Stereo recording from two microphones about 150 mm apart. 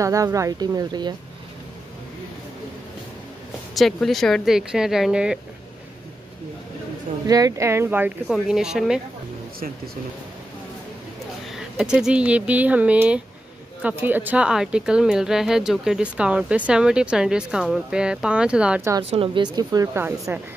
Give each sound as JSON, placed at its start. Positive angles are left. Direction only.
{"t": 0.0, "sound": "speech", "side_deg": -20}
{"t": 3.7, "sound": "speech", "side_deg": 0}
{"t": 7.2, "sound": "speech", "side_deg": -25}
{"t": 8.3, "sound": "speech", "side_deg": -5}
{"t": 11.5, "sound": "speech", "side_deg": -5}
{"t": 19.0, "sound": "speech", "side_deg": -40}